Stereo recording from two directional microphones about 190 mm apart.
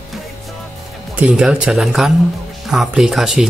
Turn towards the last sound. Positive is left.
turn(degrees=0)  # may be behind; listen again after turning